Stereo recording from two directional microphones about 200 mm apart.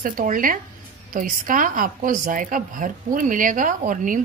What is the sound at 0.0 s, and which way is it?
A woman's voice, 45° right (ahead or behind).